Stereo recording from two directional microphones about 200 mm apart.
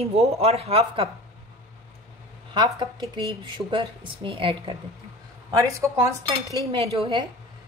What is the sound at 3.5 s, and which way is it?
Speech, 25° right (ahead or behind).